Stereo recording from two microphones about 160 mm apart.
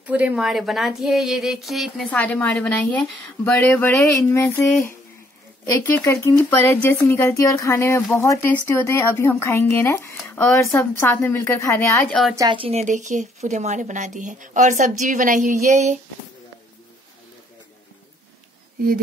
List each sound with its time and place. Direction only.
0.0 s speech: 10° right (ahead or behind)
2.0 s speech: 10° left (ahead or behind)
5.7 s speech: 15° left (ahead or behind)
12.1 s speech: centre (ahead or behind)
12.4 s a woman's voice: 30° right (ahead or behind)
12.8 s speech: 50° right (ahead or behind)